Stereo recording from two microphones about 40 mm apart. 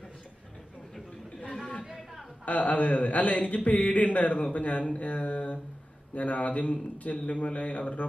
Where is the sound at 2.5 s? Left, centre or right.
Left.